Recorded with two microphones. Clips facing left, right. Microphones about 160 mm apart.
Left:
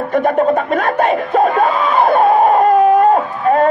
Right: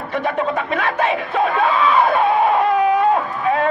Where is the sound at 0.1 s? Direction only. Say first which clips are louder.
Left 7 dB; 45° left (ahead or behind).